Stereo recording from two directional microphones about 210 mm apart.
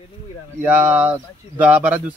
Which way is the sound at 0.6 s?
5° right (ahead or behind).